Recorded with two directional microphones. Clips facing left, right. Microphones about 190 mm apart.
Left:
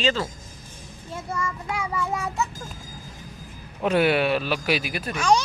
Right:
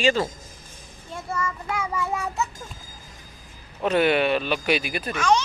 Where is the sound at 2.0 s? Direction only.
5° right (ahead or behind).